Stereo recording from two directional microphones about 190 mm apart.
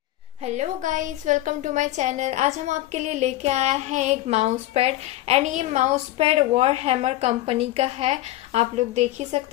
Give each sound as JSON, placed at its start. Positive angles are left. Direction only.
{"t": 0.5, "sound": "a woman's voice", "side_deg": -40}